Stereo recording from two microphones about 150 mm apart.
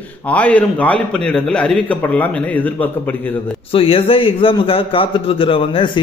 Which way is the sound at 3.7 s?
40° left (ahead or behind).